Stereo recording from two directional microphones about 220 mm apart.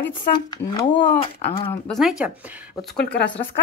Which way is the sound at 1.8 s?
Centre (ahead or behind).